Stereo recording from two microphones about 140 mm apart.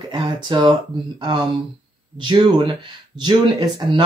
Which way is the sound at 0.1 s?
30° right (ahead or behind).